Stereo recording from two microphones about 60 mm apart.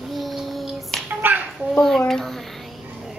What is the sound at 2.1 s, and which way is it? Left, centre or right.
Child singing, centre.